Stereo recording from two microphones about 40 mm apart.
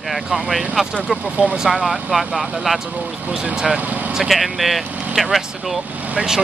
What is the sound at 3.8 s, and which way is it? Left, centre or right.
Speech, right.